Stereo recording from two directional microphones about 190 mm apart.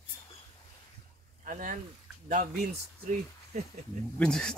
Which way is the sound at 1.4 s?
45° right (ahead or behind).